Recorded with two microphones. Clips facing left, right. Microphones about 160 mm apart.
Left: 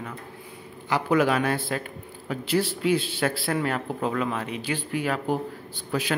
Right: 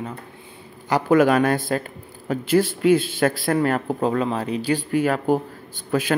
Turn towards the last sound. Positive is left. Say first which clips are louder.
# right 5 dB
turn(degrees=-50)  # may be behind; listen again after turning